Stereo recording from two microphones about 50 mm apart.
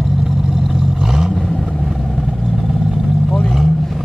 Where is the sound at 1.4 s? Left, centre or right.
Centre.